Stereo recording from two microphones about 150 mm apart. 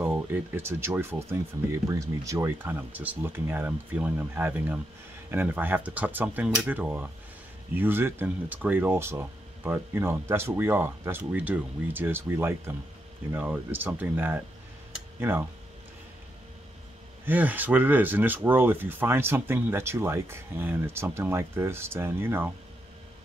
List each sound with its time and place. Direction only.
0.0 s speech: 15° right (ahead or behind)
17.2 s speech: 10° right (ahead or behind)